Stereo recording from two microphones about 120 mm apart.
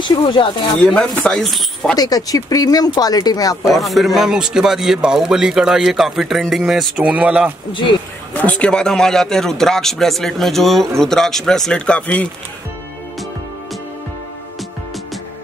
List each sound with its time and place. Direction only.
0.0 s speech: 40° left (ahead or behind)
0.8 s a man's voice: 5° left (ahead or behind)
2.0 s speech: 30° left (ahead or behind)
3.6 s a man's voice: centre (ahead or behind)
8.3 s a man's voice: 10° left (ahead or behind)